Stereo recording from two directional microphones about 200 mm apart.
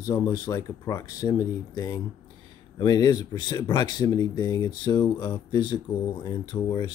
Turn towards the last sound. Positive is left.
turn(degrees=20)  # may be behind; listen again after turning